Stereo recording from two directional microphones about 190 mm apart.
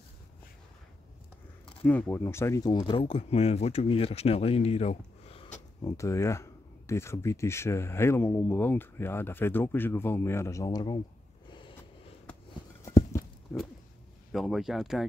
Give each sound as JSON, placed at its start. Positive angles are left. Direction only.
{"t": 1.9, "sound": "speech", "side_deg": 10}
{"t": 5.9, "sound": "speech", "side_deg": 15}
{"t": 12.8, "sound": "a sound", "side_deg": 15}
{"t": 14.3, "sound": "speech", "side_deg": 0}